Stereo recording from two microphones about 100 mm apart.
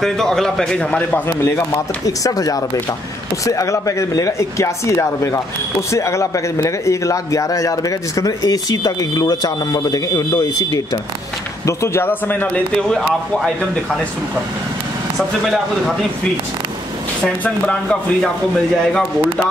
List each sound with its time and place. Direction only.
0.0 s a man's voice: 5° left (ahead or behind)
2.0 s speech: 35° left (ahead or behind)
11.6 s a man's voice: 30° left (ahead or behind)
15.1 s a man's voice: centre (ahead or behind)
17.2 s speech: 10° left (ahead or behind)